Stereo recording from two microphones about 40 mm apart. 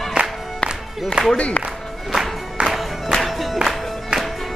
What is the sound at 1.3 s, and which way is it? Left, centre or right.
Speech, left.